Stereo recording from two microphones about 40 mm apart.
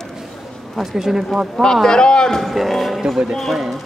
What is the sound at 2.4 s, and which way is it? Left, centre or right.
A man's voice, centre.